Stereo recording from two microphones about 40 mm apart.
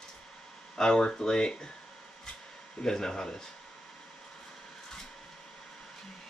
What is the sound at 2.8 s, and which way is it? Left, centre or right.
Speech, centre.